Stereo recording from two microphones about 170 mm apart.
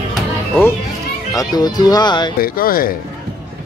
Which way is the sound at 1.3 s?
25° left (ahead or behind).